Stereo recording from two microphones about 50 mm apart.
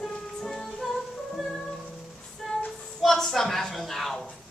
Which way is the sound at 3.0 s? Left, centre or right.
Centre.